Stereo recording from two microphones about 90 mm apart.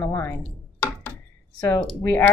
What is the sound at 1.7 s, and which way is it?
Speech, 25° left (ahead or behind).